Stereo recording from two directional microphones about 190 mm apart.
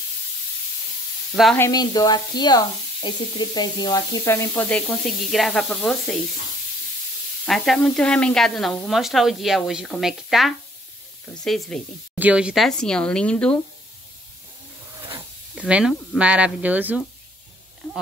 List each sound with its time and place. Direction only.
1.3 s speech: centre (ahead or behind)
1.6 s speech: 20° left (ahead or behind); by 6.1 s 5° left (ahead or behind)
7.4 s speech: centre (ahead or behind)
15.5 s speech: 5° right (ahead or behind)